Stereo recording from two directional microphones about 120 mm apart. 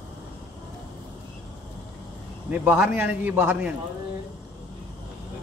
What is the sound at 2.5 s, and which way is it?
A man's voice, 10° right (ahead or behind).